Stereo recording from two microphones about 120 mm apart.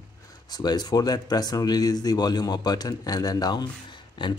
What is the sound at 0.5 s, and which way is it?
Speech, 35° left (ahead or behind).